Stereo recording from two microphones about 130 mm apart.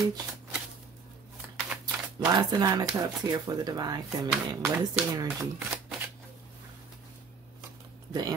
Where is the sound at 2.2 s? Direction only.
30° right (ahead or behind).